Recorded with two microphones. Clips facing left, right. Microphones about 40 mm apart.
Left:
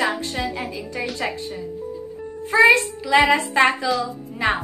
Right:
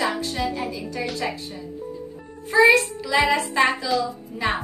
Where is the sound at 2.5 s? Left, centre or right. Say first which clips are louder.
Left 1 dB; left.